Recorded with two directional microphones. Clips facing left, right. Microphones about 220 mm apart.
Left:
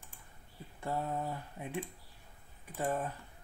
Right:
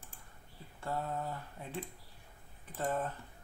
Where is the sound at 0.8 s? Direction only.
20° left (ahead or behind).